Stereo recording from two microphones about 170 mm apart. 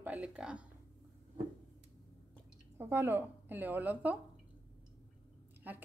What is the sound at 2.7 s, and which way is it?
A woman's voice, 15° right (ahead or behind).